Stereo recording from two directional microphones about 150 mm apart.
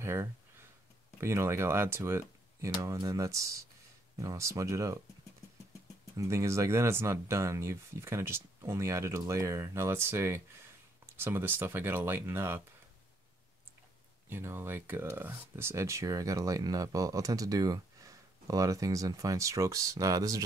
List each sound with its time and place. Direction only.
0.0 s a sound: 15° right (ahead or behind)
1.2 s speech: 20° right (ahead or behind)
6.1 s speech: 20° right (ahead or behind)
14.3 s speech: 15° right (ahead or behind)